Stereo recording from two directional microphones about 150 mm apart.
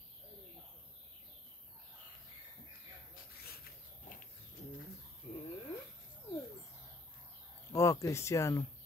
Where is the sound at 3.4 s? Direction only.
90° left.